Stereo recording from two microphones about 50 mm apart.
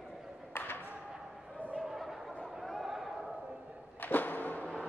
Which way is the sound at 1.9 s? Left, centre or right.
Centre.